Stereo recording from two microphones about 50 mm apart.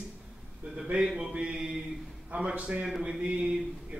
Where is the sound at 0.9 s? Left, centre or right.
Centre.